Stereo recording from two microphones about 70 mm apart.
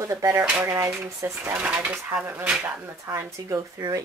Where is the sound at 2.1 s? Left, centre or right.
Right.